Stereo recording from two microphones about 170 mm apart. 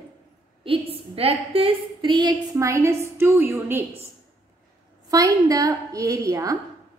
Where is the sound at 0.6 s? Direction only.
35° right (ahead or behind); by 3.8 s 15° right (ahead or behind).